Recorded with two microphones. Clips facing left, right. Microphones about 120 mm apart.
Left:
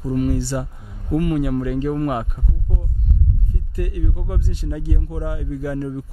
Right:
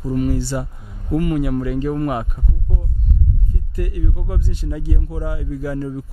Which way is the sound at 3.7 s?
15° right (ahead or behind).